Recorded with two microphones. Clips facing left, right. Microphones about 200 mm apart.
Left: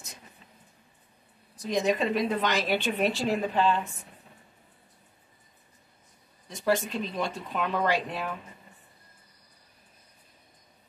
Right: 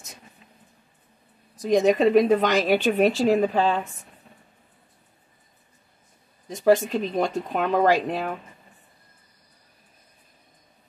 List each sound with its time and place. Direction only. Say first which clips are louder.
1.7 s speech: right 8 dB; 45° right (ahead or behind)
6.5 s speech: right 8 dB; 45° right (ahead or behind)